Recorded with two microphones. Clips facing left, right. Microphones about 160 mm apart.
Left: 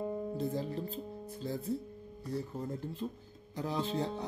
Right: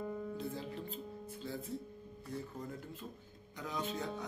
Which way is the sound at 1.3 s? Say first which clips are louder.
Left 7 dB; 35° left (ahead or behind).